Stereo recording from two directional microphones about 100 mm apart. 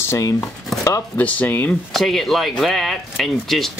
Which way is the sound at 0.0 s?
25° left (ahead or behind).